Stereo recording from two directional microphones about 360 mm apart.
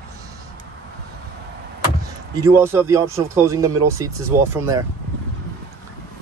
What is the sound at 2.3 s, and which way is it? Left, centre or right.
Speech, centre.